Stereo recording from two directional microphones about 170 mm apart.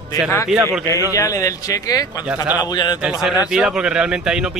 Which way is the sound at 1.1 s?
20° left (ahead or behind).